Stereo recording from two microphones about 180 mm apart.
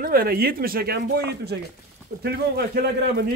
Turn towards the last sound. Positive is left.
turn(degrees=-65)  # may be behind; listen again after turning